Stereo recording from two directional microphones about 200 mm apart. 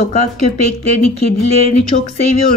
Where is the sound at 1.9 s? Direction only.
40° left (ahead or behind).